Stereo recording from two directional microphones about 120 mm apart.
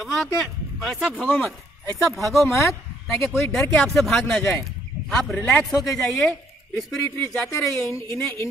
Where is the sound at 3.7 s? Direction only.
Centre (ahead or behind).